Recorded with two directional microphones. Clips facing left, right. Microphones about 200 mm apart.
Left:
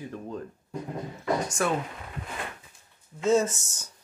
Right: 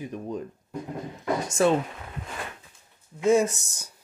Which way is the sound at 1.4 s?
25° right (ahead or behind).